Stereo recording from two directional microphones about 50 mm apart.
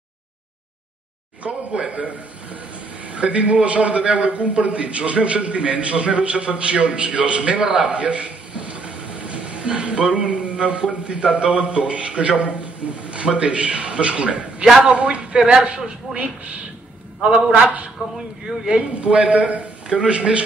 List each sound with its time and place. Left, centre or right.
1.4 s a man's voice: right
17.2 s a man's voice: right